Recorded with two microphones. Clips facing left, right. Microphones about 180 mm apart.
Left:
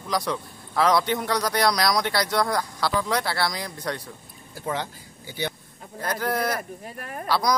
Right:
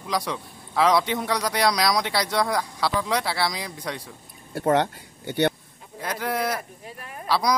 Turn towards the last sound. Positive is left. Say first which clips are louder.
# even
turn(degrees=-5)  # may be behind; listen again after turning